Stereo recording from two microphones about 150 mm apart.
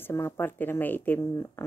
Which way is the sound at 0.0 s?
15° left (ahead or behind).